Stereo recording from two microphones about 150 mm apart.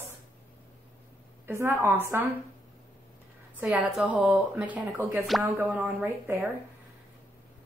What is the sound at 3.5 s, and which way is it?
Speech, 10° right (ahead or behind).